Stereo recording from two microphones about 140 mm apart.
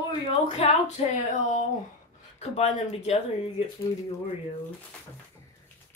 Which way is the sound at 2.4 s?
50° left (ahead or behind).